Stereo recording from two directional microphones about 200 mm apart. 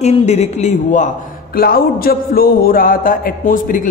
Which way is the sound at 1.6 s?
50° left (ahead or behind).